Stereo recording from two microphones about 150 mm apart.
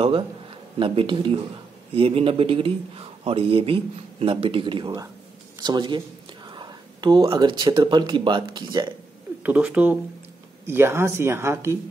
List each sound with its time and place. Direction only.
0.7 s a man's voice: 35° right (ahead or behind)
9.4 s speech: 10° right (ahead or behind)